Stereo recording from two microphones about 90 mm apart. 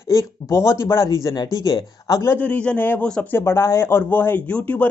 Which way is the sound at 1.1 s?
50° left (ahead or behind).